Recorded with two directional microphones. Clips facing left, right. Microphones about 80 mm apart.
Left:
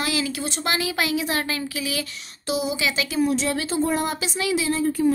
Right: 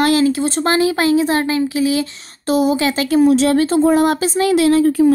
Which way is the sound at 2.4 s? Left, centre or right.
Right.